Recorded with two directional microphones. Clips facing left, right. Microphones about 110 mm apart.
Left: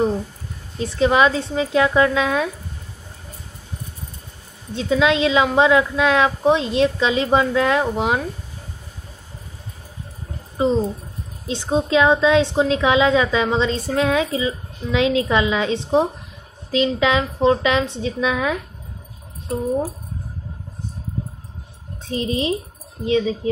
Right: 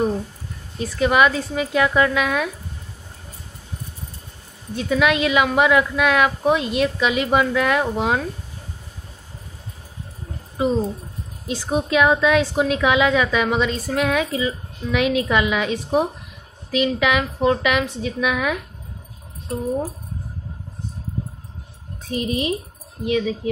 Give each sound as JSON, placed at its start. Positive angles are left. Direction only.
{"t": 0.7, "sound": "a woman's voice", "side_deg": 25}
{"t": 4.7, "sound": "a woman's voice", "side_deg": 25}
{"t": 10.6, "sound": "a woman's voice", "side_deg": 25}
{"t": 22.0, "sound": "a woman's voice", "side_deg": 25}